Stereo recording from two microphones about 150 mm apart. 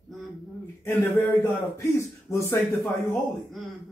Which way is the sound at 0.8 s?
15° left (ahead or behind).